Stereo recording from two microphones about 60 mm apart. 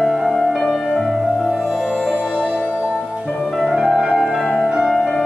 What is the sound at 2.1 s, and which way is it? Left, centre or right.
Music, centre.